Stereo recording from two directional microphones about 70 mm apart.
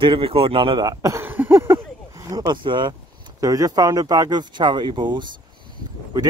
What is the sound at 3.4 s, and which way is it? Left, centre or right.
Speech, right.